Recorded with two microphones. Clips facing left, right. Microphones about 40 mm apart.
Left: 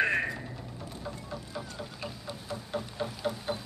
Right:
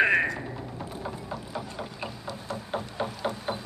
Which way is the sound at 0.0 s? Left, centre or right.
Right.